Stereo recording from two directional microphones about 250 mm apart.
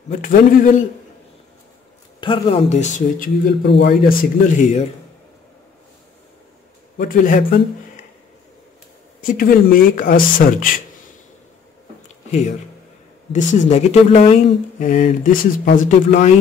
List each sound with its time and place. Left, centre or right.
0.1 s speech: left
2.1 s speech: left
7.0 s speech: left
9.2 s speech: left
13.3 s speech: left